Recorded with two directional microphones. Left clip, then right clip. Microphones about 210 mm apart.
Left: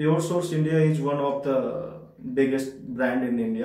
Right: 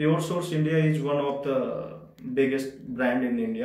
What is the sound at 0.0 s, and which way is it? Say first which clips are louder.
A man's voice: left 2 dB; 15° left (ahead or behind).